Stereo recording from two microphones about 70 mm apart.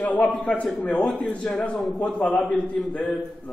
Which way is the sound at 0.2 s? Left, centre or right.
Left.